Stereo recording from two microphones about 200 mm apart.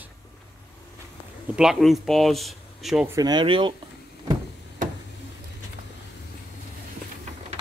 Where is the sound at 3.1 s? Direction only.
20° right (ahead or behind).